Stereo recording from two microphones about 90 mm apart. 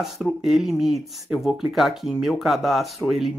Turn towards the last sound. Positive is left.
turn(degrees=0)  # may be behind; listen again after turning